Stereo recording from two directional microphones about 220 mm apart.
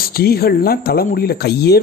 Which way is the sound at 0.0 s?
45° left (ahead or behind).